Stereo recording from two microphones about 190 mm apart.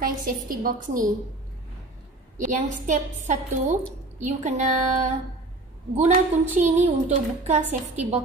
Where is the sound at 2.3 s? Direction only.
40° right (ahead or behind).